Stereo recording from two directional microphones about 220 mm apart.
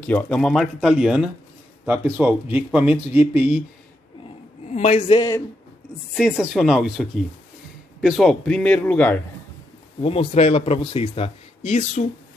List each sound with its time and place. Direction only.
0.0 s speech: 5° left (ahead or behind)
4.6 s speech: 30° left (ahead or behind)
6.1 s speech: 5° right (ahead or behind)
10.0 s speech: 25° left (ahead or behind)